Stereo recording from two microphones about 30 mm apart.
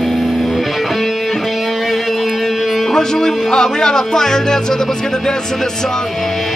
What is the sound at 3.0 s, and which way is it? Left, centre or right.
Music, centre.